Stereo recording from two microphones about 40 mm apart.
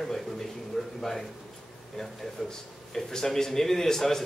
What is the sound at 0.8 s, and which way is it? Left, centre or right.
Speech, centre.